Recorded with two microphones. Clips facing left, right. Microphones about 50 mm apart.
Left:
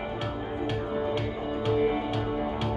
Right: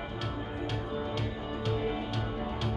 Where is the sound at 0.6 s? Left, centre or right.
Centre.